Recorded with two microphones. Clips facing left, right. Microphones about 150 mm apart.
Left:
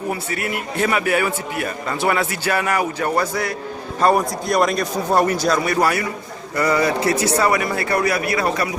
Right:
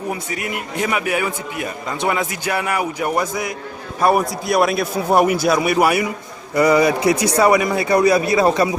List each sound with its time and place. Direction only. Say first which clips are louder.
0.1 s a man's voice: left 1 dB; 15° right (ahead or behind)